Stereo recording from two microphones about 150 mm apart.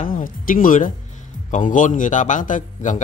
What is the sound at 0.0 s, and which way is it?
A man's voice, 65° left (ahead or behind).